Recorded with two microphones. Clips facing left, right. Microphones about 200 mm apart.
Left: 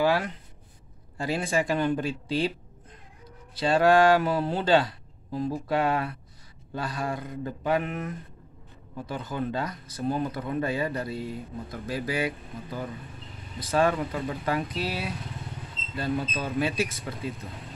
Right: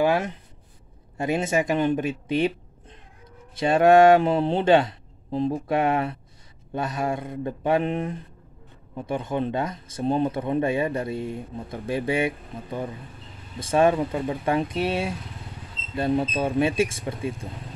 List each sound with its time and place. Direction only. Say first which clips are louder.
0.0 s a sound: right 3 dB; 20° right (ahead or behind)
1.1 s speech: right 4 dB; 20° right (ahead or behind)
3.5 s speech: right 4 dB; 25° right (ahead or behind)